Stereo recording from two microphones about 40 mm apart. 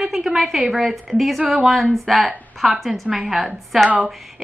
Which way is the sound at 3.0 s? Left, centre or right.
Centre.